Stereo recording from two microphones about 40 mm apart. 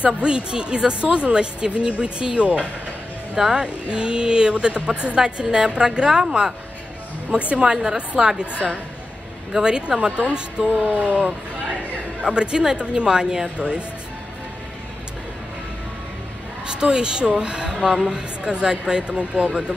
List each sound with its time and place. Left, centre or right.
0.0 s speech: right
3.3 s a woman's voice: centre
7.2 s a woman's voice: right
7.7 s a woman's voice: centre
9.5 s speech: centre
10.1 s a woman's voice: right
10.6 s music: right
12.2 s speech: right
16.6 s speech: right
19.3 s a woman's voice: right